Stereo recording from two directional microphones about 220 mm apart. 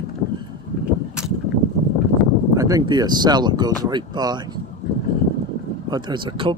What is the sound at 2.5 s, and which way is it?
A man's voice, 15° right (ahead or behind).